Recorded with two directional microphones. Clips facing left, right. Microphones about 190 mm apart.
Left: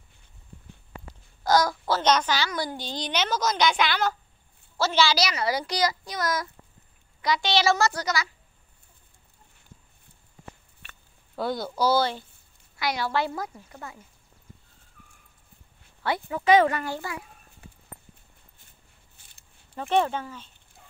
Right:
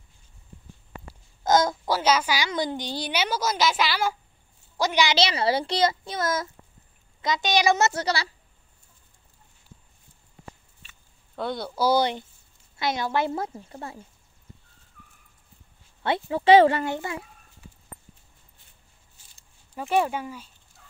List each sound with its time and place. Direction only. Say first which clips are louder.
1.4 s a child's voice: right 1 dB; 20° right (ahead or behind)
2.0 s a child's voice: even; 10° right (ahead or behind); by 8.3 s 30° right (ahead or behind)
10.8 s a sound: left 6 dB; 65° left (ahead or behind)
11.3 s speech: left 1 dB; centre (ahead or behind)
11.8 s a child's voice: right 1 dB; 15° right (ahead or behind)
16.0 s a child's voice: right 3 dB; 25° right (ahead or behind)
19.1 s a sound: left 1 dB; 60° left (ahead or behind)
19.7 s speech: even; 10° right (ahead or behind)